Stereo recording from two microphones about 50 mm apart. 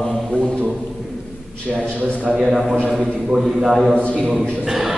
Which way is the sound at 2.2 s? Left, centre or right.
Centre.